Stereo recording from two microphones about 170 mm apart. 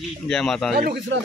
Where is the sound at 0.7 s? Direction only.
70° right (ahead or behind).